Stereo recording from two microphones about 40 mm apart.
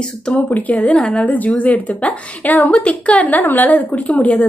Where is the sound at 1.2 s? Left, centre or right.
Left.